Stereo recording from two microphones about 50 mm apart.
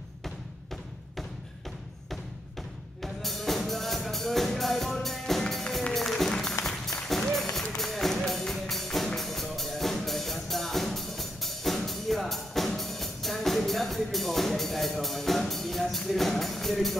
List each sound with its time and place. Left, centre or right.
3.0 s music: centre